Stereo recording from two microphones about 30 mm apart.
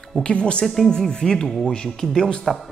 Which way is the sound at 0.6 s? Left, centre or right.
Centre.